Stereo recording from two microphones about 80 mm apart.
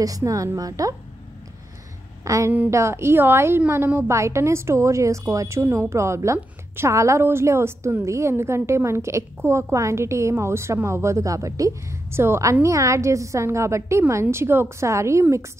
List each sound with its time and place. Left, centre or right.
0.0 s a woman's voice: right
2.2 s a woman's voice: right
12.1 s a woman's voice: right